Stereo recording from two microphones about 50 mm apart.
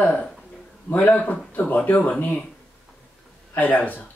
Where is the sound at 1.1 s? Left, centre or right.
Left.